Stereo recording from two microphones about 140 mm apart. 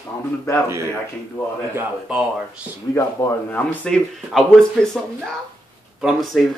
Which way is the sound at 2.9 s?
20° left (ahead or behind).